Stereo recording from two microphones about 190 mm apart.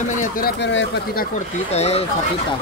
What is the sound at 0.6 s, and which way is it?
Speech, 75° left (ahead or behind).